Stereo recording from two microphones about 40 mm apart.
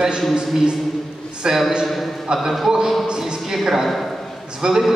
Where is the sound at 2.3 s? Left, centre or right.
Centre.